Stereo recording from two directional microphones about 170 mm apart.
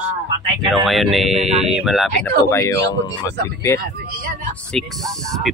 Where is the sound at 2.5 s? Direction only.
15° left (ahead or behind).